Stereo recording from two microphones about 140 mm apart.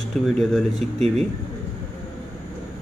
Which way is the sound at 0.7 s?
50° right (ahead or behind).